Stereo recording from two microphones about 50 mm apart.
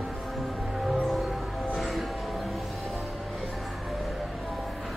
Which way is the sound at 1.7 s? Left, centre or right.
Centre.